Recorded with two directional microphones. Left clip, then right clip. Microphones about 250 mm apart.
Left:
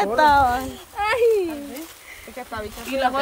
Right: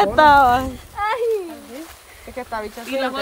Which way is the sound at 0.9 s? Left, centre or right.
Left.